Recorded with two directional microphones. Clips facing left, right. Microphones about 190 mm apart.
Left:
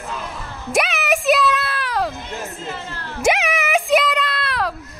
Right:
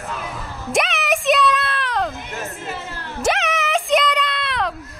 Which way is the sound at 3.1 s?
10° left (ahead or behind).